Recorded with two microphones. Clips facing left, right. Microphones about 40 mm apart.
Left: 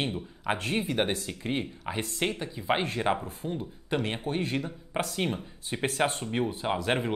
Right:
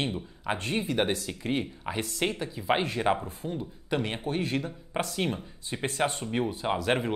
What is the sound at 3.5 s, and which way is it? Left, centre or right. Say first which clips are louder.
Speech: even; centre.